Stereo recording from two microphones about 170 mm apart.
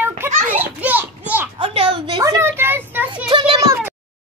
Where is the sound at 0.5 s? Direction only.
10° right (ahead or behind).